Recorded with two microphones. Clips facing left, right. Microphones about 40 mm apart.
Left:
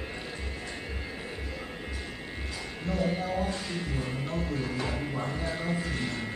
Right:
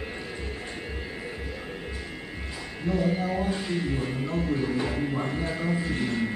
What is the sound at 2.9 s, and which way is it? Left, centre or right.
Speech, right.